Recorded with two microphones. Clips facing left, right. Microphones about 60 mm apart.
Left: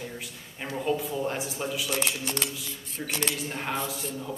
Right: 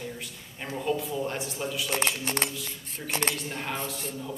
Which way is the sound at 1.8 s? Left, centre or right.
Right.